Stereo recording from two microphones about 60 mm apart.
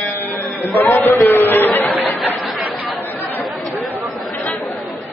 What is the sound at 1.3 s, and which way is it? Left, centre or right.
Chatter, left.